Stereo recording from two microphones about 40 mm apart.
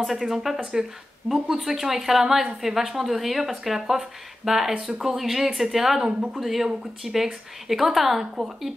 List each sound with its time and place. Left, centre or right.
0.0 s speech: centre
6.3 s speech: centre